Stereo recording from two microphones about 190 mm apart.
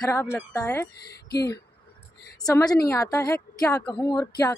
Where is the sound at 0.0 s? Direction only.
15° left (ahead or behind).